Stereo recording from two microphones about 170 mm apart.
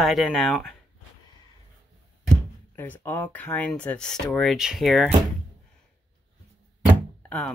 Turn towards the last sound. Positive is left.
turn(degrees=5)  # may be behind; listen again after turning